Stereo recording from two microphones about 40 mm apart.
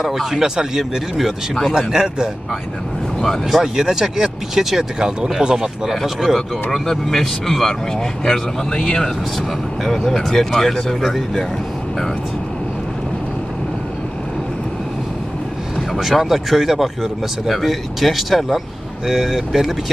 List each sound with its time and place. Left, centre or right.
0.0 s speech: centre
3.4 s speech: centre
5.9 s speech: centre
6.7 s speech: centre
9.8 s speech: centre
15.9 s speech: centre